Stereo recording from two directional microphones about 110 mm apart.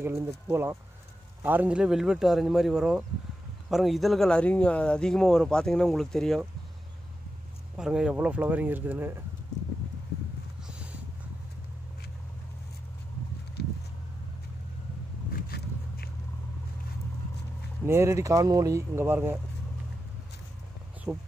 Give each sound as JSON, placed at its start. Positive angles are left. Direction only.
{"t": 0.0, "sound": "speech", "side_deg": -25}
{"t": 7.7, "sound": "speech", "side_deg": -5}
{"t": 10.7, "sound": "a sound", "side_deg": -10}
{"t": 17.8, "sound": "speech", "side_deg": -25}
{"t": 21.1, "sound": "speech", "side_deg": -10}